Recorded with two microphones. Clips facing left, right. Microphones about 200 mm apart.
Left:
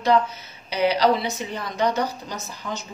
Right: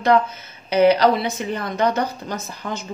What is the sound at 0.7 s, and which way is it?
A woman's voice, 55° right (ahead or behind).